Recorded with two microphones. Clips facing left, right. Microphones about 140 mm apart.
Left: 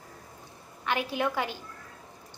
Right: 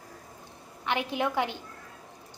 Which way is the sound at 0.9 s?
20° right (ahead or behind).